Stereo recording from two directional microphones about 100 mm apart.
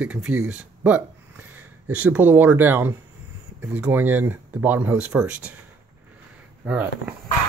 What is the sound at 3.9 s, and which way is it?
Speech, 20° right (ahead or behind).